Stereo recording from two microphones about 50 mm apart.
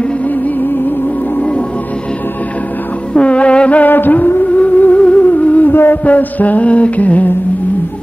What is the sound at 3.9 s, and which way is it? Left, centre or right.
Music, left.